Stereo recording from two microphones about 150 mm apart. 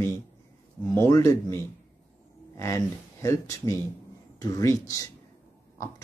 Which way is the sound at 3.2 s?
20° left (ahead or behind).